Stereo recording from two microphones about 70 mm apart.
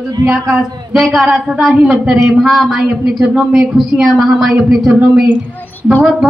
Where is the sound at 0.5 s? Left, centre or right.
Centre.